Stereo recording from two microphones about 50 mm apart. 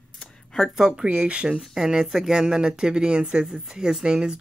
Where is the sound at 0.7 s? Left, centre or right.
Centre.